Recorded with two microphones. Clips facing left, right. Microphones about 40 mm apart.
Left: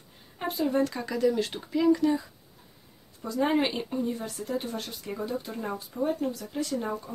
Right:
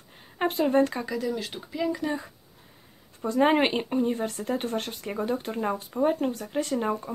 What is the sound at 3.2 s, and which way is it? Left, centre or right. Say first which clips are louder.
Speech: right 4 dB; right.